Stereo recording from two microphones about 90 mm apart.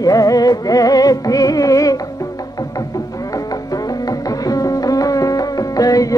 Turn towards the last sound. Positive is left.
turn(degrees=40)  # may be behind; listen again after turning